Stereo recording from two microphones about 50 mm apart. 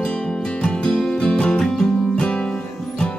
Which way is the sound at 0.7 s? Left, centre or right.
Centre.